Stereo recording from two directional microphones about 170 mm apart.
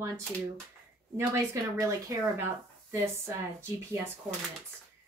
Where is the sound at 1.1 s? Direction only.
15° right (ahead or behind).